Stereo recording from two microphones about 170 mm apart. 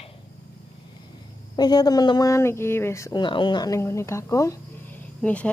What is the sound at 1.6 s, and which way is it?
Speech, 25° left (ahead or behind).